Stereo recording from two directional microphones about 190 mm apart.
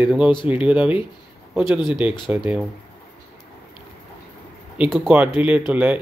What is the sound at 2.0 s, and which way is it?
Speech, 10° right (ahead or behind).